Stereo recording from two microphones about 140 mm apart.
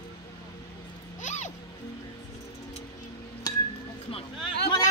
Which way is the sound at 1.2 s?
60° left (ahead or behind).